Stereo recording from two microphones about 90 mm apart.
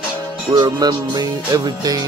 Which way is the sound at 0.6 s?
50° right (ahead or behind).